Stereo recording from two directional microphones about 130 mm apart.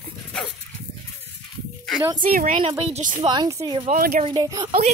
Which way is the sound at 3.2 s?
35° right (ahead or behind).